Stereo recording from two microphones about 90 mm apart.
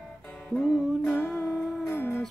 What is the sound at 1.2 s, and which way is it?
Music, 10° left (ahead or behind).